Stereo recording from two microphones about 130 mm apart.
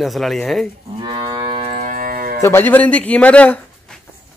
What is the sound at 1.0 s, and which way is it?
Moo, 35° right (ahead or behind).